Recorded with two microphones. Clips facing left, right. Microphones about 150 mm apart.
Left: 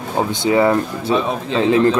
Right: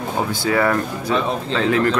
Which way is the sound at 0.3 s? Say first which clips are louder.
Left 5 dB; 20° left (ahead or behind).